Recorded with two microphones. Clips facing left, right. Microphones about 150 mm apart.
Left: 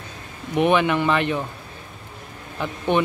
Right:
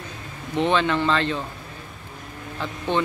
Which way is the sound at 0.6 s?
15° left (ahead or behind).